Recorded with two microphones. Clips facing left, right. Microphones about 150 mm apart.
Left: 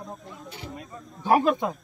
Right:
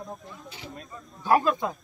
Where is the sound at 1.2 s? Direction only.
20° left (ahead or behind).